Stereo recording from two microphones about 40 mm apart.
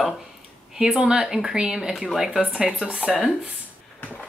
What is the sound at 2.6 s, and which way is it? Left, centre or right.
Speech, centre.